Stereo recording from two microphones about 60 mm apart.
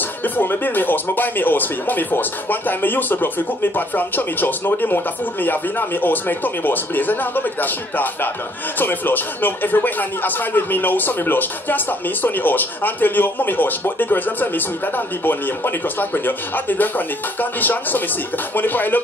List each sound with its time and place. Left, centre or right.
0.2 s speech: left